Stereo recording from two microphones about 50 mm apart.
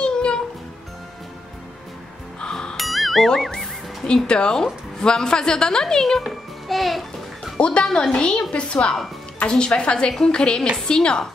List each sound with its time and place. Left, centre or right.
0.0 s music: centre
2.4 s music: centre
2.8 s music: centre
3.3 s speech: centre
4.1 s a woman's voice: centre
6.2 s music: centre
7.5 s a woman's voice: centre